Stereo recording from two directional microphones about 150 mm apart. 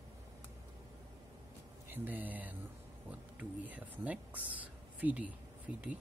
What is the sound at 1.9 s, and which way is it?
Speech, 10° right (ahead or behind).